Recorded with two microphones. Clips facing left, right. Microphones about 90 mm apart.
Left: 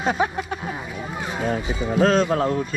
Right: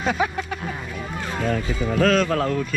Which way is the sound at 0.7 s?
15° left (ahead or behind).